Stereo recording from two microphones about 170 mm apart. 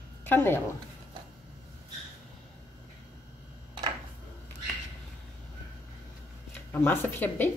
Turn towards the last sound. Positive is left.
turn(degrees=10)  # may be behind; listen again after turning